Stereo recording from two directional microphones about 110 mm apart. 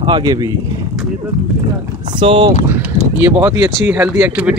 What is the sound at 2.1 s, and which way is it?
Speech, 50° right (ahead or behind).